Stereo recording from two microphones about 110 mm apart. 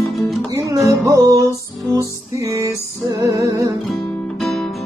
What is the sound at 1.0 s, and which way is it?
Music, 30° right (ahead or behind).